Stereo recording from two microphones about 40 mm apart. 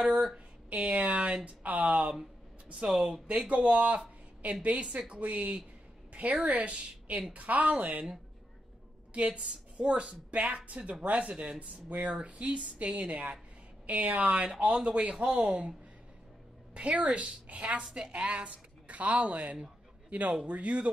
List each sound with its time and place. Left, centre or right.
0.0 s a sound: right
0.7 s a woman's voice: right
2.7 s a woman's voice: right
3.3 s a woman's voice: right
7.7 s a woman's voice: right
16.7 s a woman's voice: right